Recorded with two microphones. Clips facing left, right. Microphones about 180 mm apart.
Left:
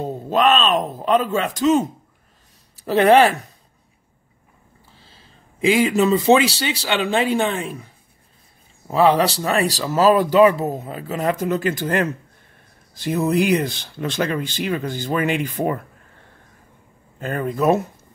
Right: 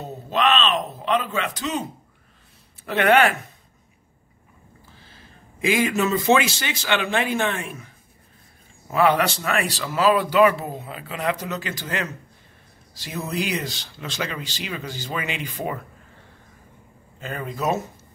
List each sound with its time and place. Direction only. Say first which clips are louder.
0.0 s speech: left 5 dB; 45° left (ahead or behind)
2.8 s speech: left 5 dB; 35° left (ahead or behind)
5.0 s speech: right 2 dB; 30° left (ahead or behind)
8.8 s speech: left 3 dB; 30° left (ahead or behind); by 15.8 s 50° left (ahead or behind)
17.2 s speech: left 7 dB; 50° left (ahead or behind)